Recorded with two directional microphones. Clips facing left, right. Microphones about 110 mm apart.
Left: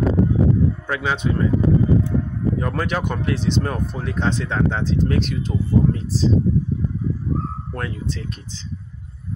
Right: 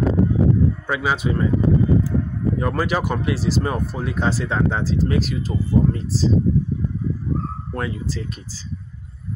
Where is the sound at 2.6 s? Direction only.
5° right (ahead or behind).